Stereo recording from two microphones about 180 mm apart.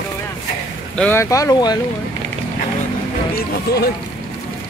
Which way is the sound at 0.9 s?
10° left (ahead or behind).